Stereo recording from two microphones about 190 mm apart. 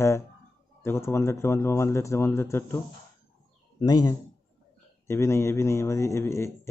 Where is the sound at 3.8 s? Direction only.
20° left (ahead or behind).